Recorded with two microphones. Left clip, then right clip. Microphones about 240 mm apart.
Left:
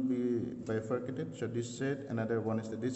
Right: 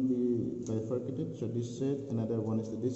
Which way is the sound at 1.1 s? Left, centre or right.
Left.